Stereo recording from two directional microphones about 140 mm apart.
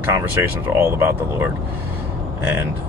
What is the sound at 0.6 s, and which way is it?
Speech, 15° right (ahead or behind).